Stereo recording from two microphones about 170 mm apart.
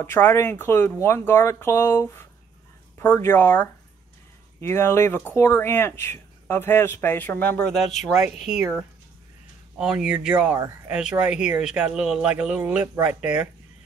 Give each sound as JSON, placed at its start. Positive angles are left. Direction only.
{"t": 0.0, "sound": "speech", "side_deg": 15}
{"t": 9.8, "sound": "speech", "side_deg": -5}
{"t": 10.6, "sound": "speech", "side_deg": -20}
{"t": 10.9, "sound": "speech", "side_deg": -5}